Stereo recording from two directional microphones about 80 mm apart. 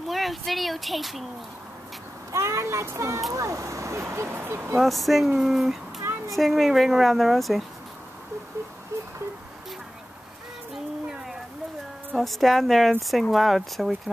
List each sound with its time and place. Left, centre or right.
0.0 s speech: centre
2.3 s speech: right
4.7 s speech: centre
8.9 s wail: right
10.7 s a sound: centre
12.1 s speech: centre